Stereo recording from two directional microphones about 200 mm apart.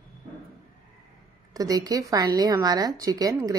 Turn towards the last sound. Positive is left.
turn(degrees=-15)  # may be behind; listen again after turning